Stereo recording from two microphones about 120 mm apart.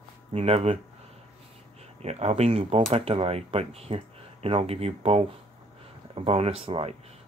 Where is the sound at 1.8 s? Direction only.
60° right (ahead or behind).